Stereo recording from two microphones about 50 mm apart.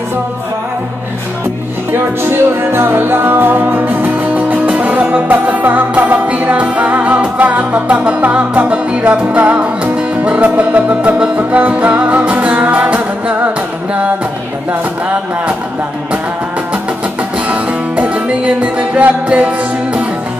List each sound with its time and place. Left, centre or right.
1.9 s music: right
4.4 s music: right
11.3 s music: right
17.5 s music: right